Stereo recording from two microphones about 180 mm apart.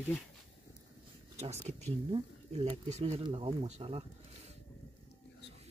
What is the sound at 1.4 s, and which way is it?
Speech, 35° right (ahead or behind).